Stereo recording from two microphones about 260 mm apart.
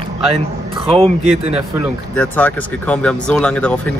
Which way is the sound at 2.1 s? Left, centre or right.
Centre.